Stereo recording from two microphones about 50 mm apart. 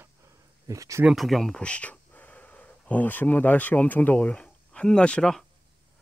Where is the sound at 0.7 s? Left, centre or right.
Right.